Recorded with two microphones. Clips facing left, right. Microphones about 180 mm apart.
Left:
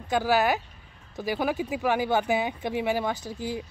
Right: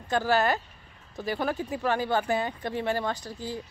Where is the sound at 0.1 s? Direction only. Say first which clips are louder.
Left 1 dB; 10° left (ahead or behind).